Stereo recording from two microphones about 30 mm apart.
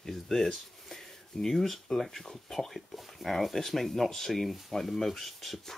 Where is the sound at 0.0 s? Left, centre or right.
Centre.